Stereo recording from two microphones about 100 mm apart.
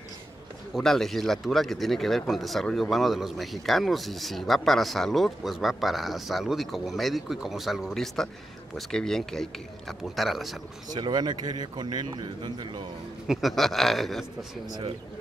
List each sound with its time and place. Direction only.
0.7 s speech: 5° left (ahead or behind)
10.9 s a man's voice: 45° right (ahead or behind)
13.3 s speech: centre (ahead or behind)